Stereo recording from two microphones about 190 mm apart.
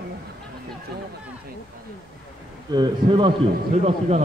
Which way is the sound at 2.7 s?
25° right (ahead or behind).